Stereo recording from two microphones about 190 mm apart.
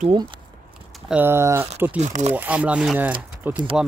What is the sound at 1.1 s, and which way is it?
Speech, 10° right (ahead or behind).